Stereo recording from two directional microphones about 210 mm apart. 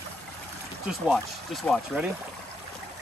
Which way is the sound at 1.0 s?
Centre (ahead or behind).